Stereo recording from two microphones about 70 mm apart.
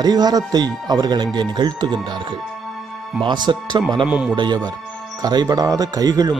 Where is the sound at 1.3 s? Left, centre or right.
Right.